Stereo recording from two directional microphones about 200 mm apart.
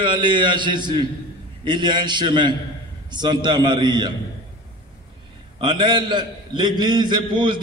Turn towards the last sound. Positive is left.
turn(degrees=-25)  # may be behind; listen again after turning